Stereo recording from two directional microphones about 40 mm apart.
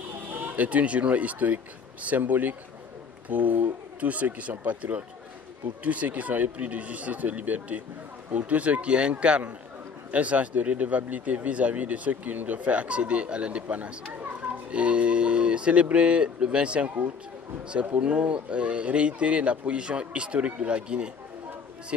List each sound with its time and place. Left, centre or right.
0.3 s a sound: right
0.7 s speech: right
10.1 s speech: right
18.0 s speech: right